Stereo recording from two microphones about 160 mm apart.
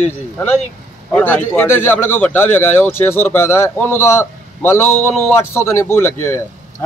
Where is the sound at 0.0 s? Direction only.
10° left (ahead or behind).